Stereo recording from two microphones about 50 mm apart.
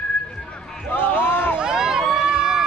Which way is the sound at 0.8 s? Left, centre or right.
Left.